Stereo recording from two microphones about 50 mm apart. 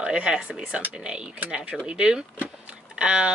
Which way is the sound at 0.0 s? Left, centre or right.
Centre.